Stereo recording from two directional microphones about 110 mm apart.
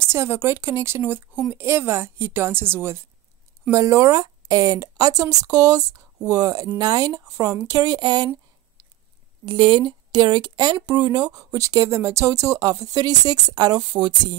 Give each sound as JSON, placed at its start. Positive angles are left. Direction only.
{"t": 0.1, "sound": "a woman's voice", "side_deg": -25}
{"t": 9.5, "sound": "speech", "side_deg": -50}